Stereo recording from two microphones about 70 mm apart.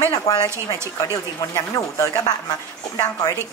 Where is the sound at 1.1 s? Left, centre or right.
Left.